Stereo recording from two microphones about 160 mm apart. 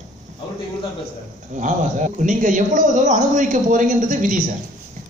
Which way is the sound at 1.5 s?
50° right (ahead or behind).